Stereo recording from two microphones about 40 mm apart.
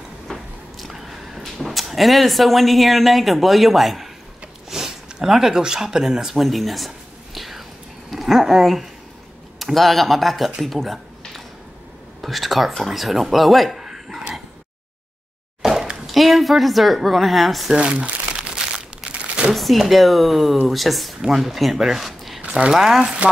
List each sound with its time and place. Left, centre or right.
0.3 s biting: centre
1.4 s speech: centre
4.6 s a sound: centre
5.6 s speech: centre
6.4 s speech: centre
7.3 s whispering: centre
8.1 s speech: centre
10.6 s a sound: centre
12.2 s speech: centre
13.7 s a sound: centre
15.6 s a sound: centre
16.1 s a woman's voice: centre
17.7 s speech: right
19.5 s speech: centre